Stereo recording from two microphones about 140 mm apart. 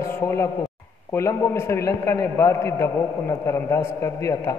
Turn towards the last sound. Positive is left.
turn(degrees=20)  # may be behind; listen again after turning